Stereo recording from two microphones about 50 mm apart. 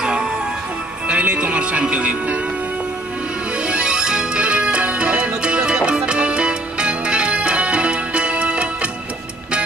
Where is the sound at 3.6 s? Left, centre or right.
Right.